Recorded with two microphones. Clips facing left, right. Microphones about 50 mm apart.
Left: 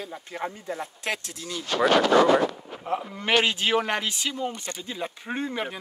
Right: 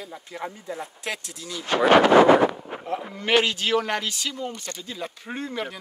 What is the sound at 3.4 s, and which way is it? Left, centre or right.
Speech, left.